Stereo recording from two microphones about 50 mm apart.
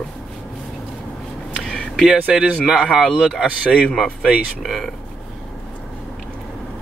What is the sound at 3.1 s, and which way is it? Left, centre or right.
Speech, centre.